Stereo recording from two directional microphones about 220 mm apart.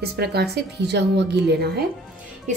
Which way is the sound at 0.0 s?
45° right (ahead or behind).